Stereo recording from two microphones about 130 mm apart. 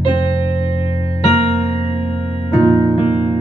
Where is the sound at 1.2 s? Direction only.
50° left (ahead or behind).